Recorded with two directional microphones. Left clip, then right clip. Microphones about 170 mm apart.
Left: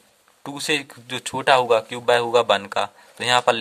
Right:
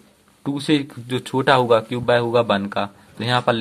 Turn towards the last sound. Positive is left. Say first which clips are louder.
# left 1 dB
turn(degrees=40)  # may be behind; listen again after turning